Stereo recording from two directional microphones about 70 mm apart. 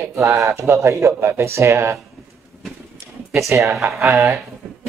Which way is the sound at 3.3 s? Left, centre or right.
Right.